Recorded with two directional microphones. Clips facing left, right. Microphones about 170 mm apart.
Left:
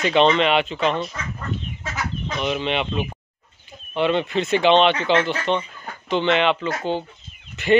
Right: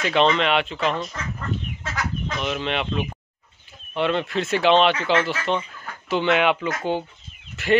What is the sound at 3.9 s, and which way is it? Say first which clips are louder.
Speech: left 2 dB; centre (ahead or behind).